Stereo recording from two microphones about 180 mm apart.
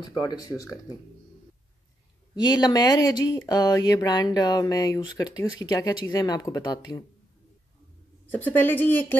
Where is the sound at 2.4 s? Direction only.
25° left (ahead or behind).